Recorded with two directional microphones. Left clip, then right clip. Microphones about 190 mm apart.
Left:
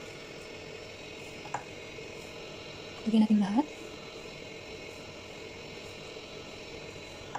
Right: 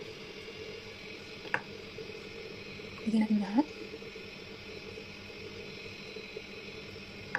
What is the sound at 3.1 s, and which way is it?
Speech, centre (ahead or behind).